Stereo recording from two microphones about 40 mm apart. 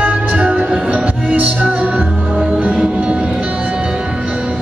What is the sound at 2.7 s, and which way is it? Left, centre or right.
Music, right.